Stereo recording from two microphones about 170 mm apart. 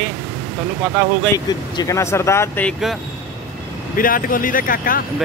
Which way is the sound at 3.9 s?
55° left (ahead or behind).